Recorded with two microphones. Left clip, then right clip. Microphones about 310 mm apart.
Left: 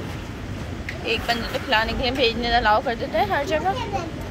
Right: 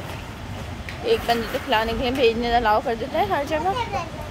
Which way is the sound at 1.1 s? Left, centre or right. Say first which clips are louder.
Right 3 dB; centre.